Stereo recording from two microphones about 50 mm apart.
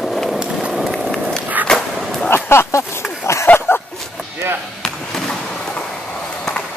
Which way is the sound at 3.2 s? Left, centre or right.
Left.